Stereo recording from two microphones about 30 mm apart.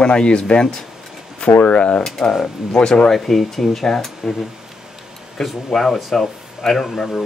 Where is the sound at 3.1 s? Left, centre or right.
Centre.